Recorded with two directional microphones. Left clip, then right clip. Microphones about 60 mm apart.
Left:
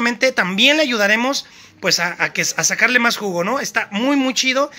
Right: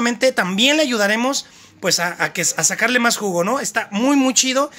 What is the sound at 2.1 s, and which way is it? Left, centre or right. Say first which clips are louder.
Speech: left 1 dB; right.